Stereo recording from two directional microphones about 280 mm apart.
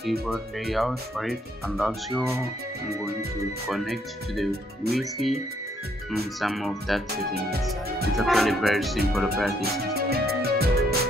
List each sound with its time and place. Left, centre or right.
0.3 s speech: centre
3.6 s speech: centre
8.2 s speech: centre
9.6 s music: right